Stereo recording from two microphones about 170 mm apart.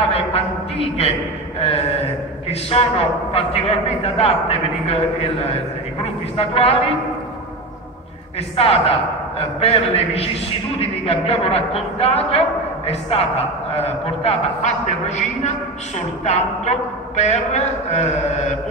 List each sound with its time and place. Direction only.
0.1 s a sound: 35° left (ahead or behind)
2.7 s a man's voice: 35° left (ahead or behind)
6.3 s a man's voice: 35° left (ahead or behind)
8.5 s a man's voice: 35° left (ahead or behind)